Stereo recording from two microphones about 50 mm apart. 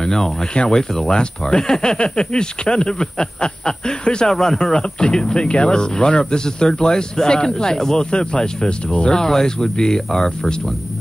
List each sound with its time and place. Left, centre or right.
0.0 s speech: centre
9.1 s speech: centre